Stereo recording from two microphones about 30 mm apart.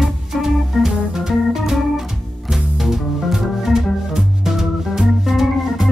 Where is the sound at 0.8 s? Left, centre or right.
Centre.